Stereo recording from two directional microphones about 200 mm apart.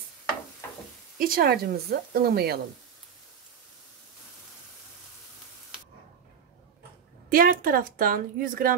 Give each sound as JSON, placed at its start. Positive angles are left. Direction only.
{"t": 1.1, "sound": "speech", "side_deg": -45}
{"t": 7.2, "sound": "speech", "side_deg": -45}